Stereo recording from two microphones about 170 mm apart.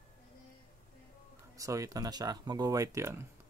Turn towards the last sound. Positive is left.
turn(degrees=-20)  # may be behind; listen again after turning